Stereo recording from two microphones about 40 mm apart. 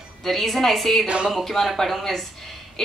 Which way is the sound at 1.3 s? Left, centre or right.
Centre.